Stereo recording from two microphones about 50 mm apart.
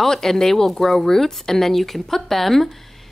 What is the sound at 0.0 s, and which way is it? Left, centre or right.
A woman's voice, centre.